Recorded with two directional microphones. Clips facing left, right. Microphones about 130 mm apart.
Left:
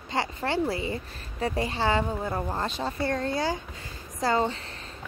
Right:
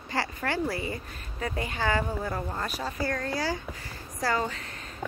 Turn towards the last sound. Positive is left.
turn(degrees=30)  # may be behind; listen again after turning